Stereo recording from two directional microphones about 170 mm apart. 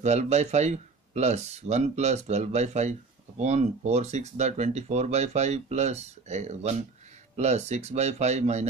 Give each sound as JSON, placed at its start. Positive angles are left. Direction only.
{"t": 0.0, "sound": "speech", "side_deg": -40}